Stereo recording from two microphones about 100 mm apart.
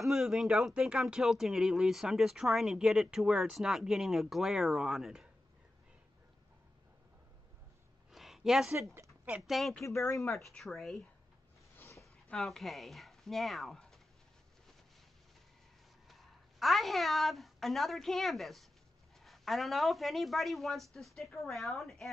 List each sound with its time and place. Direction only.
0.0 s speech: 5° right (ahead or behind)
8.1 s a sound: centre (ahead or behind)
9.5 s speech: centre (ahead or behind)
9.8 s speech: 30° left (ahead or behind)
10.3 s speech: centre (ahead or behind)
16.1 s a woman's voice: centre (ahead or behind)